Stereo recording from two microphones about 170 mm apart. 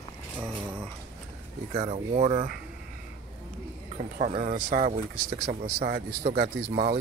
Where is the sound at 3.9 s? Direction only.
45° right (ahead or behind).